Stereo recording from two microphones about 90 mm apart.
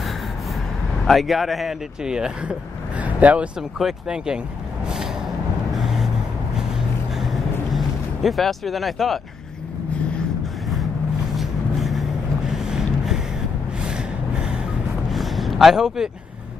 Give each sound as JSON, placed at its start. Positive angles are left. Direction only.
{"t": 1.0, "sound": "speech", "side_deg": 0}
{"t": 3.0, "sound": "vehicle", "side_deg": -15}
{"t": 3.7, "sound": "speech", "side_deg": -5}
{"t": 4.8, "sound": "vehicle", "side_deg": -5}
{"t": 7.2, "sound": "a sound", "side_deg": 0}
{"t": 11.3, "sound": "vehicle", "side_deg": 0}
{"t": 13.8, "sound": "gasp", "side_deg": -10}
{"t": 15.0, "sound": "a sound", "side_deg": 0}